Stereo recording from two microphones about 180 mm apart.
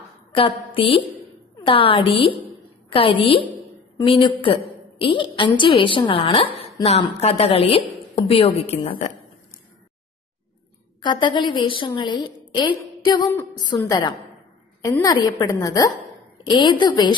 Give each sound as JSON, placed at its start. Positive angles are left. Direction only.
{"t": 0.3, "sound": "a woman's voice", "side_deg": 30}
{"t": 11.0, "sound": "a woman's voice", "side_deg": 25}